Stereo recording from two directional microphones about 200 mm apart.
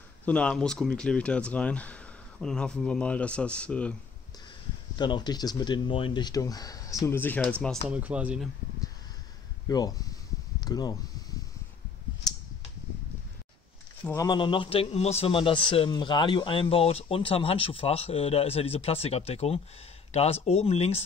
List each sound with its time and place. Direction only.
0.2 s speech: 5° left (ahead or behind)
4.9 s a man's voice: 20° left (ahead or behind)
7.9 s speech: 5° right (ahead or behind)
9.7 s a man's voice: 20° left (ahead or behind)
14.1 s a man's voice: 20° left (ahead or behind)